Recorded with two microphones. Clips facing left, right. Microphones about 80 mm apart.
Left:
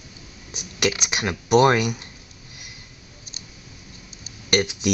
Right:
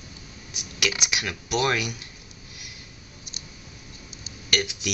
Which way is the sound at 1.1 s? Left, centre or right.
Left.